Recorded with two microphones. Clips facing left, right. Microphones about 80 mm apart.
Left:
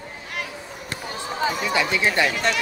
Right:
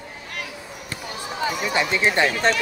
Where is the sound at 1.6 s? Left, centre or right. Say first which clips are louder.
Right 2 dB; right.